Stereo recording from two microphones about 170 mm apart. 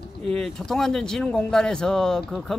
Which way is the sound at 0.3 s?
5° left (ahead or behind).